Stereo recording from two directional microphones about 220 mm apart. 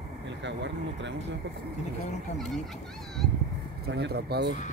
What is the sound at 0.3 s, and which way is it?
Speech, 55° right (ahead or behind).